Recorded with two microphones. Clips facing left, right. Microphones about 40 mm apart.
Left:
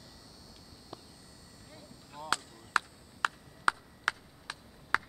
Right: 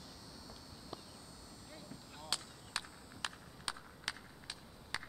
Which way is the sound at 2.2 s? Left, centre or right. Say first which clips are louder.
Left 10 dB; left.